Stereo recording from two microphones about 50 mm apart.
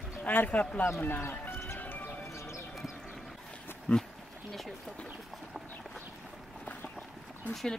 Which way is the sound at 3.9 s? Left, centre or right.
Centre.